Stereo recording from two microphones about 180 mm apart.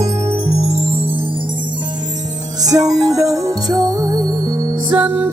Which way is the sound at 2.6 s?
20° right (ahead or behind).